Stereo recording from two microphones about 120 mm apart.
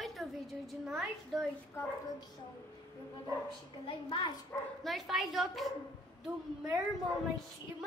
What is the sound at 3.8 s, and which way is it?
Speech, 45° left (ahead or behind).